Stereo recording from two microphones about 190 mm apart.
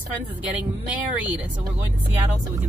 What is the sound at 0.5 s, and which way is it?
Speech, 10° right (ahead or behind).